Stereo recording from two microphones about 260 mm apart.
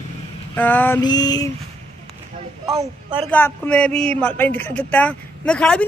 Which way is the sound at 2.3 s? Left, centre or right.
Centre.